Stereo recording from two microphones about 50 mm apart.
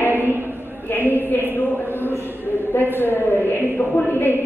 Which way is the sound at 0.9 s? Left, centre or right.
Left.